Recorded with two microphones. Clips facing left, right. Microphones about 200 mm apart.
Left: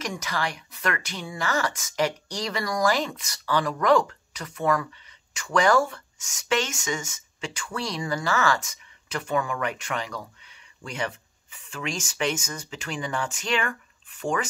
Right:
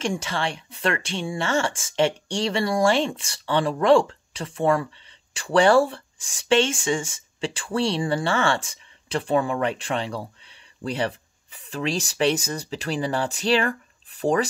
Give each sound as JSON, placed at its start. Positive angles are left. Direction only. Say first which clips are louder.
{"t": 0.0, "sound": "speech", "louder": "right 4 dB", "side_deg": -30}